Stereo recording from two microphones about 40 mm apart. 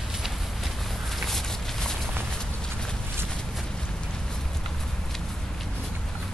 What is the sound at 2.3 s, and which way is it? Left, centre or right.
Clip-clop, centre.